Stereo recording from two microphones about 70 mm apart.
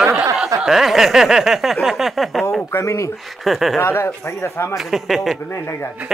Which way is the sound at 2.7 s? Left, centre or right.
Left.